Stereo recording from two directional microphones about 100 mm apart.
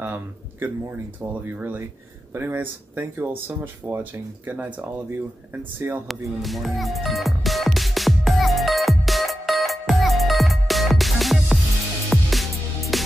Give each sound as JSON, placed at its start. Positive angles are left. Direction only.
{"t": 0.0, "sound": "speech", "side_deg": -20}
{"t": 6.0, "sound": "music", "side_deg": 0}